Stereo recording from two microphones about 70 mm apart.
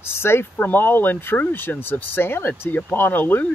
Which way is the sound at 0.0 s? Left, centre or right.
Left.